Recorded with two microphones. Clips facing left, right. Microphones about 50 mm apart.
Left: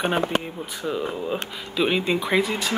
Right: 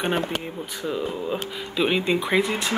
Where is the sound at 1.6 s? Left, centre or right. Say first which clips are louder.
Even; centre.